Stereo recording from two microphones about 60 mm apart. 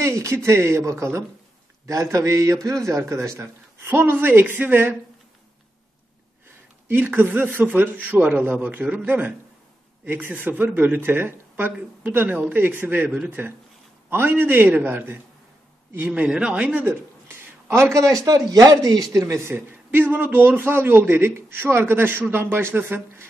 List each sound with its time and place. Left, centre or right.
0.0 s a man's voice: right
3.9 s a man's voice: right
6.9 s a man's voice: right
16.1 s speech: centre
16.5 s a man's voice: right
16.8 s a man's voice: right
19.1 s a man's voice: right
19.5 s a man's voice: right